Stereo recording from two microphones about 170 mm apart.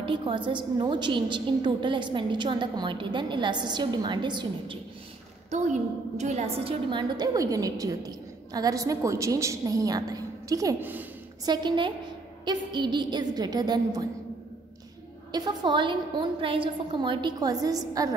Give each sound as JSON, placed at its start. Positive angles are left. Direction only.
{"t": 0.0, "sound": "a woman's voice", "side_deg": -30}
{"t": 5.5, "sound": "a woman's voice", "side_deg": -45}
{"t": 11.4, "sound": "a woman's voice", "side_deg": -25}
{"t": 15.3, "sound": "a woman's voice", "side_deg": -25}